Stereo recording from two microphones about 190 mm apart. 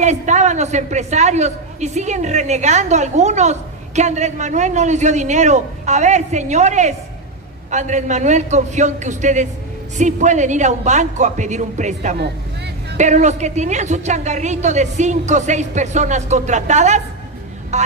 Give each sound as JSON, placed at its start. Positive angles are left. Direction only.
{"t": 0.0, "sound": "a woman's voice", "side_deg": -35}